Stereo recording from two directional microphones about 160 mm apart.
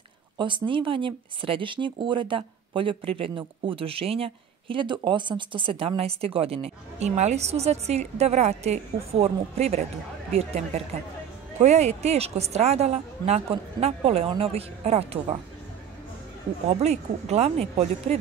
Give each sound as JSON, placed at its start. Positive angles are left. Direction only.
{"t": 0.4, "sound": "a woman's voice", "side_deg": -30}
{"t": 16.6, "sound": "a woman's voice", "side_deg": -45}